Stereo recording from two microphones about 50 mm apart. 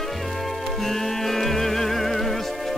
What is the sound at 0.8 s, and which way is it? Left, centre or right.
Music, centre.